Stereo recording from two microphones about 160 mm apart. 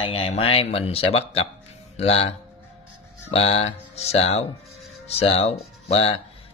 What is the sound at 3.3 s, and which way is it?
Speech, 40° left (ahead or behind).